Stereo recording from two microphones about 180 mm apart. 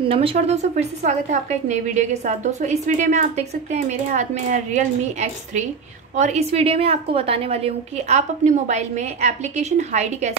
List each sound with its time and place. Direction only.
0.1 s a woman's voice: 30° right (ahead or behind)
6.2 s a woman's voice: 35° right (ahead or behind)